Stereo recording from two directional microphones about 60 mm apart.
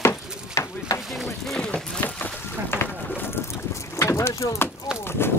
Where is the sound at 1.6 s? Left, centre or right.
Centre.